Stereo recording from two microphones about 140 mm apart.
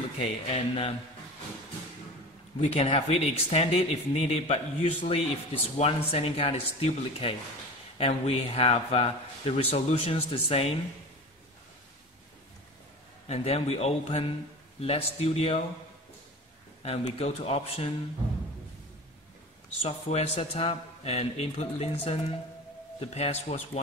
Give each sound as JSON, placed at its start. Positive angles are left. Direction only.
{"t": 0.2, "sound": "speech", "side_deg": 50}
{"t": 2.6, "sound": "speech", "side_deg": 45}
{"t": 13.3, "sound": "speech", "side_deg": 45}
{"t": 17.2, "sound": "speech", "side_deg": 45}
{"t": 19.8, "sound": "speech", "side_deg": 50}